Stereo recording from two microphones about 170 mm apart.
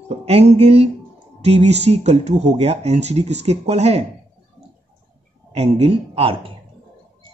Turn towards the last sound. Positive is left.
turn(degrees=-35)  # may be behind; listen again after turning